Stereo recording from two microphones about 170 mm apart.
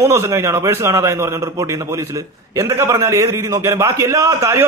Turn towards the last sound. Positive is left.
turn(degrees=-15)  # may be behind; listen again after turning